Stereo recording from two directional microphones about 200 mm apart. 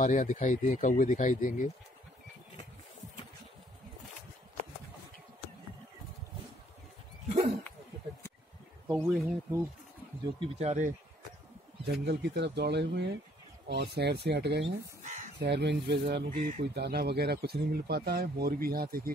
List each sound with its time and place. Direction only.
0.0 s speech: 40° left (ahead or behind)
8.8 s speech: 10° right (ahead or behind)
10.4 s speech: 30° right (ahead or behind)
11.8 s speech: 55° right (ahead or behind)
15.0 s crow: 35° right (ahead or behind)
15.3 s speech: 60° right (ahead or behind)
16.3 s speech: 40° right (ahead or behind)
16.6 s speech: 55° right (ahead or behind)